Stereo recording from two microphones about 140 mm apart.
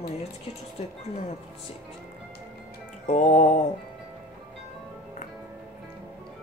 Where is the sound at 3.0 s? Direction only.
60° left (ahead or behind).